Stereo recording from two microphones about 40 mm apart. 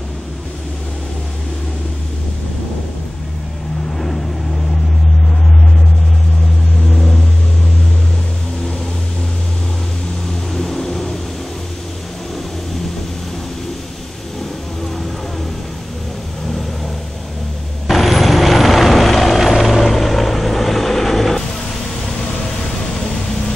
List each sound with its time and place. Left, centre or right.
6.9 s vehicle: centre
10.5 s vehicle: centre
17.8 s vehicle: centre